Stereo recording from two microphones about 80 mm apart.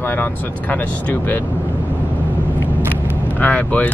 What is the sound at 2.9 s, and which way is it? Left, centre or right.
Vehicle, centre.